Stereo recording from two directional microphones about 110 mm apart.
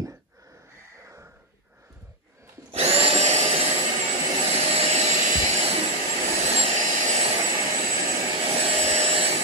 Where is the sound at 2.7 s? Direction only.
70° right (ahead or behind); by 3.8 s 85° right.